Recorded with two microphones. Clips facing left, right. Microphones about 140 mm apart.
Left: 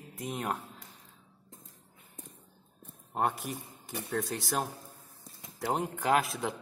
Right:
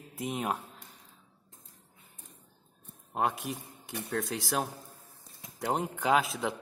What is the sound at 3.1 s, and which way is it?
A man's voice, centre (ahead or behind).